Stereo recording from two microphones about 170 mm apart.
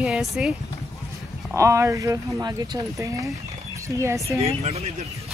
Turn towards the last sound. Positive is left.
turn(degrees=-40)  # may be behind; listen again after turning